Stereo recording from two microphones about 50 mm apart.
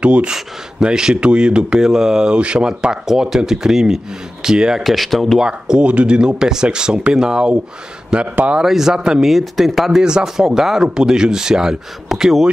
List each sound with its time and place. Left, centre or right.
0.0 s speech: right
4.8 s speech: centre
5.4 s speech: centre